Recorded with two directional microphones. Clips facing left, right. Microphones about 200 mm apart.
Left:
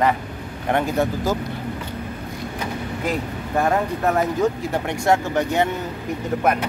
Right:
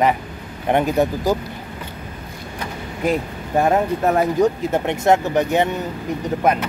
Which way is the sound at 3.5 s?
20° right (ahead or behind).